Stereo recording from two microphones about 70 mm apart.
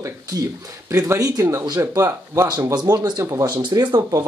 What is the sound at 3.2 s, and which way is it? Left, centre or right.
Speech, right.